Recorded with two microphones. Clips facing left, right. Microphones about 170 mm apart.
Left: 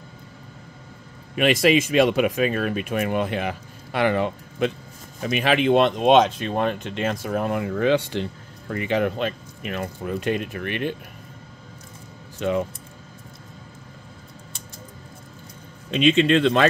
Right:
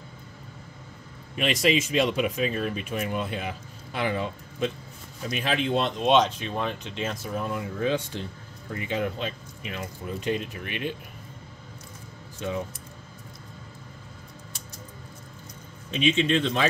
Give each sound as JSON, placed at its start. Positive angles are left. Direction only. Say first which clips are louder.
{"t": 1.3, "sound": "speech", "louder": "left 6 dB", "side_deg": 65}
{"t": 5.3, "sound": "speech", "louder": "left 7 dB", "side_deg": 75}
{"t": 12.4, "sound": "speech", "louder": "left 7 dB", "side_deg": 65}
{"t": 15.9, "sound": "speech", "louder": "left 6 dB", "side_deg": 70}